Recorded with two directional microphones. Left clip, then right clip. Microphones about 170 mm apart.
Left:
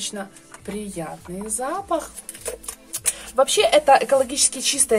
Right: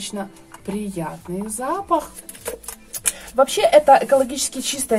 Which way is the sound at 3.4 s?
20° left (ahead or behind).